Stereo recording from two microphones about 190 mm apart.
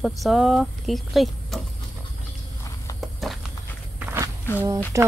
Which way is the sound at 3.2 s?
Centre (ahead or behind).